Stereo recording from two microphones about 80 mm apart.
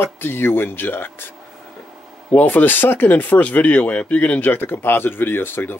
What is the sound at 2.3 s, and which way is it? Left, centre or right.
Speech, left.